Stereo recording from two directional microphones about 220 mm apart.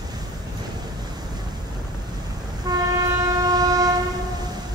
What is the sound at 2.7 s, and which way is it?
Train, 15° right (ahead or behind).